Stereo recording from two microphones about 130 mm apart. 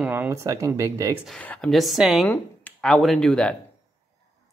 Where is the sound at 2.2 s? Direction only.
15° left (ahead or behind).